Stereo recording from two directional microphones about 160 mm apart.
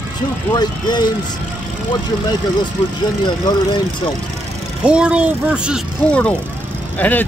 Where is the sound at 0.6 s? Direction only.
25° left (ahead or behind).